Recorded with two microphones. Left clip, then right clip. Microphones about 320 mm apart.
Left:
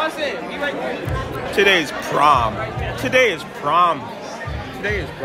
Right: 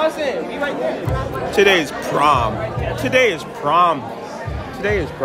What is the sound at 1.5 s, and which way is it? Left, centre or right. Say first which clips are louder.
A man's voice: right 1 dB; centre.